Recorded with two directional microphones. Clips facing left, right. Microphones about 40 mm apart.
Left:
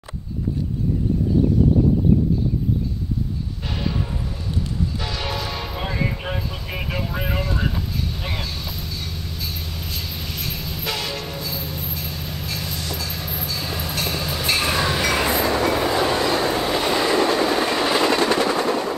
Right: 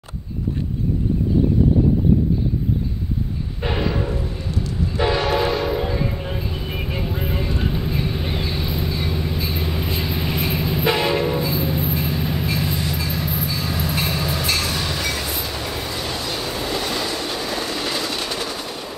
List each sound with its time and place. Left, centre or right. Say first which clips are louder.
3.6 s train: right 5 dB; right
6.0 s vehicle: even; left
6.5 s vehicle: right 1 dB; right; by 13.5 s centre
13.5 s train: right 3 dB; centre
14.6 s train: left 3 dB; left
15.0 s train: left 6 dB; left
16.2 s train: left 6 dB; left
16.6 s train: left 4 dB; left
17.5 s train: left 5 dB; left
18.1 s machine gun: left 8 dB; left